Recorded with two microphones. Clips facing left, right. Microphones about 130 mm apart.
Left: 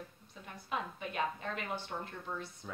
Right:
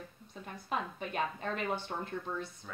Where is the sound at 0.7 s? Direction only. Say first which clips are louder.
Right 2 dB; 35° right (ahead or behind).